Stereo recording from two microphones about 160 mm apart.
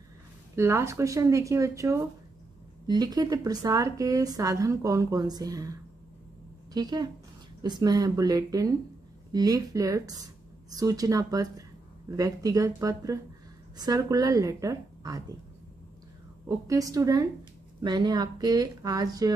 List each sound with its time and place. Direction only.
0.6 s a woman's voice: 15° right (ahead or behind)
16.4 s a woman's voice: 20° right (ahead or behind)